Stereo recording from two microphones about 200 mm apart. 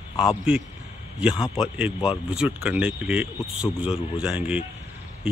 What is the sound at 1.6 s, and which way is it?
Speech, 5° right (ahead or behind).